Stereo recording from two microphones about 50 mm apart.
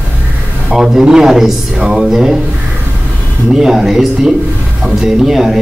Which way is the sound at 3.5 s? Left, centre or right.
Centre.